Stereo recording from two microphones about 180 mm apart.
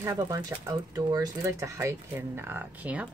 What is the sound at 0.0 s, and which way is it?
Speech, 15° right (ahead or behind).